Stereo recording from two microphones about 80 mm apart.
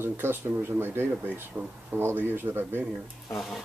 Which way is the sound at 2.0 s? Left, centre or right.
Right.